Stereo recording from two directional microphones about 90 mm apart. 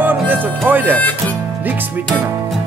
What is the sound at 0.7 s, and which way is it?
Speech, 20° right (ahead or behind).